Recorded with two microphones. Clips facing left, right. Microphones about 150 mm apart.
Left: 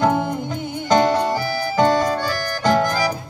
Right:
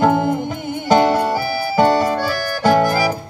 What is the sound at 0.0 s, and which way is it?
Music, 55° right (ahead or behind).